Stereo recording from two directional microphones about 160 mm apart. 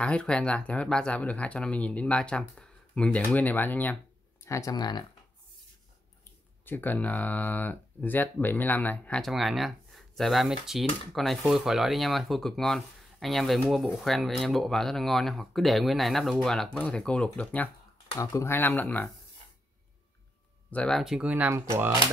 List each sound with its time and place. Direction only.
0.0 s speech: 5° left (ahead or behind)
4.5 s speech: 20° left (ahead or behind)
6.6 s speech: 10° left (ahead or behind)
18.1 s speech: 20° left (ahead or behind)
20.7 s speech: 5° left (ahead or behind)
21.0 s speech: 5° right (ahead or behind)